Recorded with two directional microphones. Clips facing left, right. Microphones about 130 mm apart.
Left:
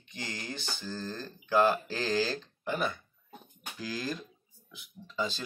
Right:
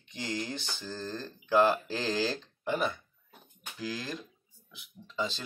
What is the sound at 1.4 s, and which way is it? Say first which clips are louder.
Speech: right 1 dB; 20° right (ahead or behind).